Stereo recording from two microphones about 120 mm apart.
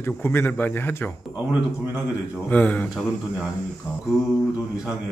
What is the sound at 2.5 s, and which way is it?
Speech, 10° left (ahead or behind).